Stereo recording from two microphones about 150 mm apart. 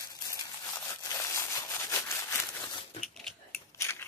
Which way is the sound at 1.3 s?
20° left (ahead or behind).